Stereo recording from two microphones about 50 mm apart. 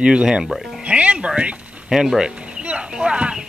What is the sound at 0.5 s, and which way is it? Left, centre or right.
Speech, centre.